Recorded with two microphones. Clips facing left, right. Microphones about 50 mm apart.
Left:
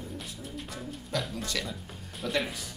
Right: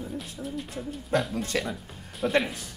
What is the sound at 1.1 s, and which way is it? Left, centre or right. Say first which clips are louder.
Speech: right 7 dB; right.